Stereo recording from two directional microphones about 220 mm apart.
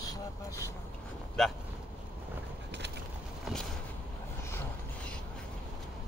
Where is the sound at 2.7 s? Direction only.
50° right (ahead or behind).